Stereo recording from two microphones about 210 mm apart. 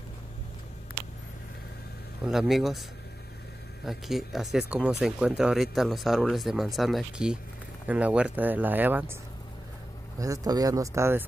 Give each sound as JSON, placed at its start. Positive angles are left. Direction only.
{"t": 2.2, "sound": "speech", "side_deg": 0}
{"t": 3.8, "sound": "speech", "side_deg": 0}
{"t": 10.1, "sound": "speech", "side_deg": -15}